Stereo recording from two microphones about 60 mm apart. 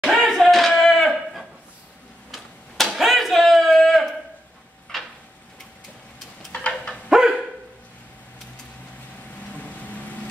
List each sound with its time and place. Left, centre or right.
0.0 s a sound: centre
6.5 s dog: centre
7.1 s dog: centre
9.5 s boat: left